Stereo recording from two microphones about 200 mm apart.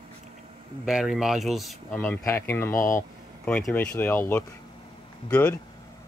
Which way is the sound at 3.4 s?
5° left (ahead or behind).